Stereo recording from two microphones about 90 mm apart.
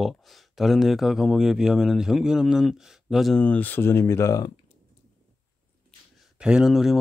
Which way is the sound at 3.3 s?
15° left (ahead or behind).